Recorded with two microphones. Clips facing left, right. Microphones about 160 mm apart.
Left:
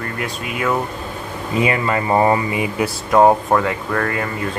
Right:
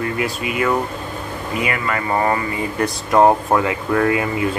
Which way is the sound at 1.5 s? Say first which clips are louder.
Left 4 dB; 25° left (ahead or behind).